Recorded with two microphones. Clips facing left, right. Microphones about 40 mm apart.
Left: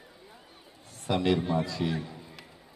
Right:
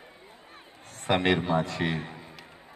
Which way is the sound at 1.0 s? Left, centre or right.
Right.